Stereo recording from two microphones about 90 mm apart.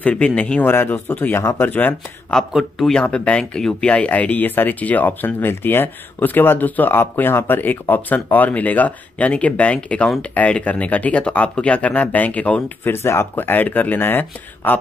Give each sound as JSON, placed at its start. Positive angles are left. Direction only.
{"t": 0.0, "sound": "speech", "side_deg": 15}
{"t": 2.3, "sound": "speech", "side_deg": 5}